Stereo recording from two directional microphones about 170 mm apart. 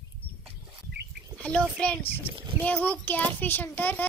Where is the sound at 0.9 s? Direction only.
75° right (ahead or behind).